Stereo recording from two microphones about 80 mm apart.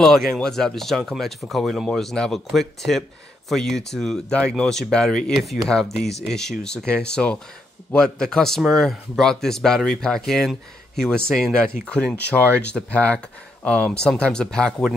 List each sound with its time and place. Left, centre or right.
0.4 s a man's voice: centre